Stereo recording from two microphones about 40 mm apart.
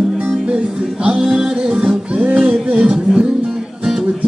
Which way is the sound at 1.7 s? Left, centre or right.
Right.